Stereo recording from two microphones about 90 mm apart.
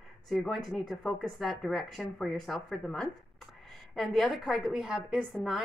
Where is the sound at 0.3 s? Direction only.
Centre (ahead or behind).